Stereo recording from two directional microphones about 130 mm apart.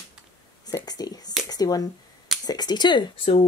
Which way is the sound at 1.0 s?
30° left (ahead or behind).